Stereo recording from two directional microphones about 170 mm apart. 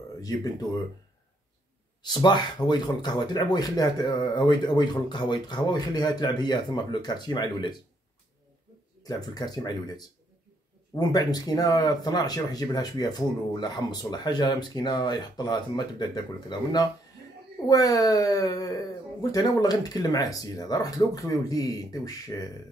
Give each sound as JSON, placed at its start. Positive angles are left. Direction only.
{"t": 0.2, "sound": "speech", "side_deg": 20}
{"t": 2.0, "sound": "speech", "side_deg": 25}
{"t": 9.0, "sound": "speech", "side_deg": 20}